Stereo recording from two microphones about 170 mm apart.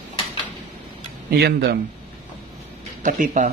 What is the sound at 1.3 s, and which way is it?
Speech, 65° right (ahead or behind).